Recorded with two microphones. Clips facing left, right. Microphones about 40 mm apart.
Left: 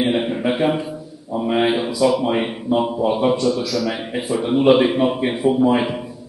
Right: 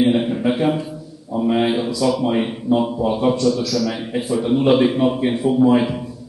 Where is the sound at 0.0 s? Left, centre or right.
Centre.